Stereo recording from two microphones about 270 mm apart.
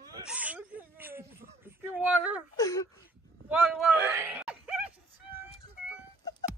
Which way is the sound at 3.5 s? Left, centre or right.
Centre.